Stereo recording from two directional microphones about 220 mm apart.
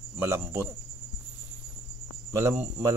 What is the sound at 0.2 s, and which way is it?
Speech, 10° right (ahead or behind).